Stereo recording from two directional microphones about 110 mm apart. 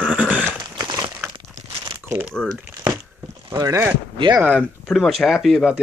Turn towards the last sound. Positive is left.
turn(degrees=-5)  # may be behind; listen again after turning